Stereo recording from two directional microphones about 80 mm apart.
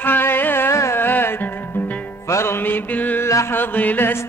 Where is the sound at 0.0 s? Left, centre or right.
Left.